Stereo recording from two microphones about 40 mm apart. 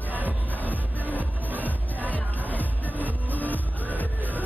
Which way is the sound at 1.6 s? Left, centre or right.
Left.